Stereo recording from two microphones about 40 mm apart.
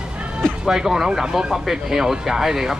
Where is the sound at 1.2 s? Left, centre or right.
Right.